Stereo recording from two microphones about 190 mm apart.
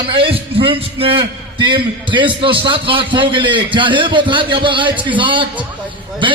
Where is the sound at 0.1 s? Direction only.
30° right (ahead or behind).